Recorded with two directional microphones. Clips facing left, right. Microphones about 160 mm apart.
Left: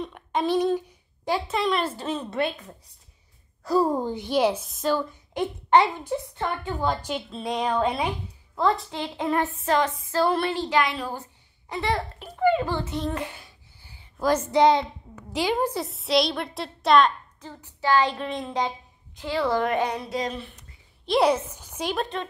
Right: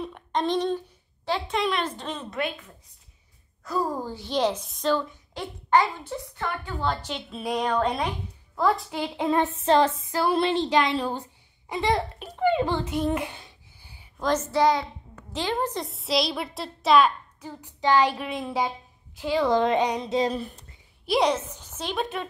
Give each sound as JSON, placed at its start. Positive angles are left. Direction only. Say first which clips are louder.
{"t": 0.0, "sound": "a sound", "louder": "left 1 dB", "side_deg": 5}
{"t": 1.5, "sound": "a woman's voice", "louder": "even", "side_deg": 0}
{"t": 3.6, "sound": "a woman's voice", "louder": "left 6 dB", "side_deg": 30}
{"t": 5.3, "sound": "a child's voice", "louder": "left 3 dB", "side_deg": 20}
{"t": 7.2, "sound": "a woman's voice", "louder": "right 1 dB", "side_deg": -5}
{"t": 10.1, "sound": "a child's voice", "louder": "left 1 dB", "side_deg": -15}
{"t": 14.1, "sound": "a woman's voice", "louder": "left 3 dB", "side_deg": 10}
{"t": 15.1, "sound": "a woman's voice", "louder": "left 3 dB", "side_deg": 10}
{"t": 20.2, "sound": "speech", "louder": "right 4 dB", "side_deg": -35}
{"t": 21.2, "sound": "a woman's voice", "louder": "left 3 dB", "side_deg": 10}
{"t": 21.9, "sound": "speech", "louder": "right 1 dB", "side_deg": 0}